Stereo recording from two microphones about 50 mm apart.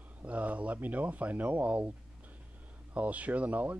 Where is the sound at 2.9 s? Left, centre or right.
Right.